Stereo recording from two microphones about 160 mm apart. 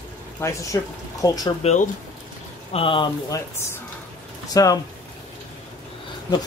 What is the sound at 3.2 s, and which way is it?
Speech, 20° left (ahead or behind).